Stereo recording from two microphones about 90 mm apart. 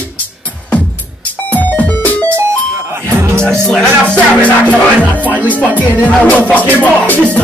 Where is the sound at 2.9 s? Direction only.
25° right (ahead or behind).